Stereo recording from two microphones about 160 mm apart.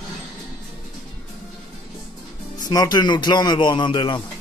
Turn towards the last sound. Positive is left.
turn(degrees=30)  # may be behind; listen again after turning